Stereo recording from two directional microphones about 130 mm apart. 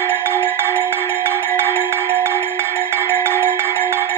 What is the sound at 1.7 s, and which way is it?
Music, 15° right (ahead or behind).